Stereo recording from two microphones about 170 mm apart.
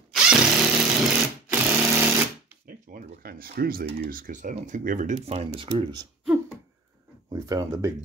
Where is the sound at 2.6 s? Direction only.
60° right (ahead or behind).